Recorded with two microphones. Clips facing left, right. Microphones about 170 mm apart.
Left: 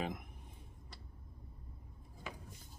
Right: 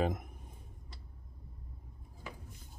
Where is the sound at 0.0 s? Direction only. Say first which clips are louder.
Right 7 dB; 45° right (ahead or behind).